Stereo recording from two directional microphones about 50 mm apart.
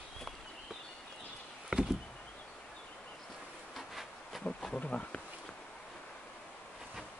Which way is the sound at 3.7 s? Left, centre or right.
Centre.